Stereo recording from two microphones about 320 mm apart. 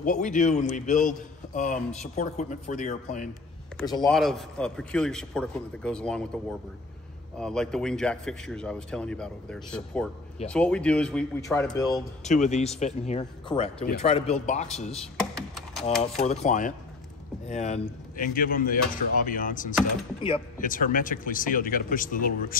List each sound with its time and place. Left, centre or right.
0.0 s speech: left
4.1 s a man's voice: centre; by 15.0 s left
15.0 s computer keyboard: centre
16.0 s speech: left